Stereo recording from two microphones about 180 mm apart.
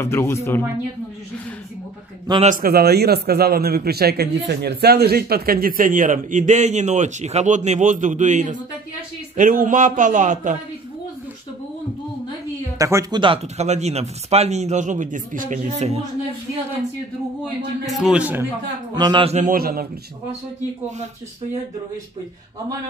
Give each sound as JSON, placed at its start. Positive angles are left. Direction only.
{"t": 0.0, "sound": "speech", "side_deg": 15}
{"t": 2.4, "sound": "a man's voice", "side_deg": -50}
{"t": 12.7, "sound": "speech", "side_deg": -20}
{"t": 17.9, "sound": "a man's voice", "side_deg": -5}
{"t": 18.9, "sound": "a man's voice", "side_deg": -25}
{"t": 19.3, "sound": "a man's voice", "side_deg": -50}